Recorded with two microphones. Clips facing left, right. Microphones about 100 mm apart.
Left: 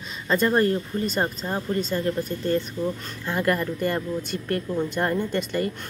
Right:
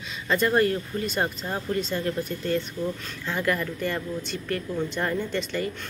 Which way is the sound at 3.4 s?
40° left (ahead or behind).